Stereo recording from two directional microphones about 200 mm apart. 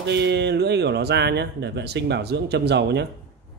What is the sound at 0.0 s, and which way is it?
Speech, 60° right (ahead or behind).